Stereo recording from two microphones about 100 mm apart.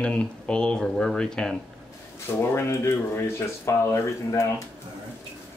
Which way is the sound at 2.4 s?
25° left (ahead or behind).